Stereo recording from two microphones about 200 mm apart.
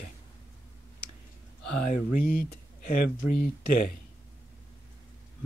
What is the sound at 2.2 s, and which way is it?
Speech, 45° left (ahead or behind).